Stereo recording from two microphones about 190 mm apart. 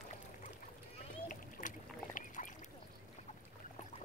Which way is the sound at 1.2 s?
45° left (ahead or behind).